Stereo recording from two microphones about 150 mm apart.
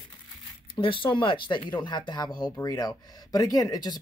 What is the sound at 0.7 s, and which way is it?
Speech, 35° left (ahead or behind).